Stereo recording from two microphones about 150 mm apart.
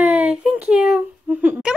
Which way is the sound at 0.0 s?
5° right (ahead or behind).